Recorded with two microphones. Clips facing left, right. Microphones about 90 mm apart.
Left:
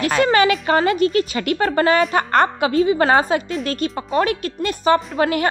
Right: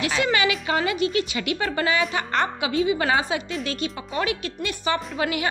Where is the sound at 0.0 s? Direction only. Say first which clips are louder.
Left 7 dB; 45° left (ahead or behind).